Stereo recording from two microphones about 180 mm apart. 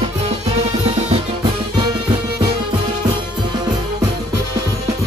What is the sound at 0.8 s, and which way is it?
Music, 35° right (ahead or behind).